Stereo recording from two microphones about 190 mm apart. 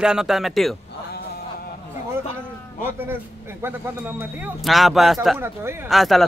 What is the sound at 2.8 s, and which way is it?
Speech, 10° right (ahead or behind).